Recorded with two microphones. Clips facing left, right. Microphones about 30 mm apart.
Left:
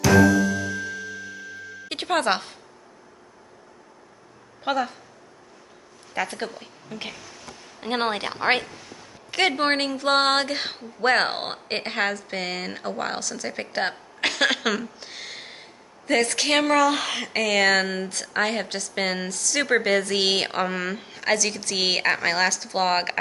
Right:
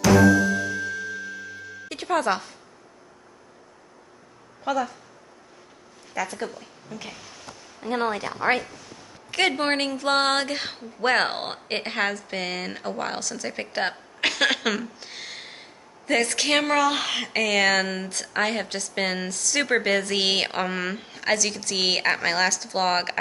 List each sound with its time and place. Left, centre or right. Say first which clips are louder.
0.0 s music: even; centre
1.9 s speech: left 1 dB; left
4.6 s a woman's voice: left 1 dB; left
6.1 s a woman's voice: left 1 dB; left
7.2 s a sound: left 1 dB; centre
7.8 s speech: left 1 dB; left
8.7 s a sound: left 1 dB; centre
9.9 s speech: left 2 dB; centre